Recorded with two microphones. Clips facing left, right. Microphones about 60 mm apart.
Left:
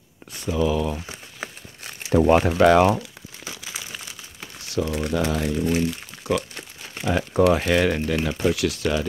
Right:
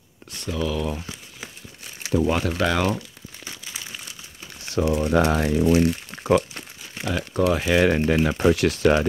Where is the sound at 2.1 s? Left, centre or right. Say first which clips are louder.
Left 3 dB; left.